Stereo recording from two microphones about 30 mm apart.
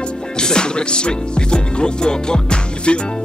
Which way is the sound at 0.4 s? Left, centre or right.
Left.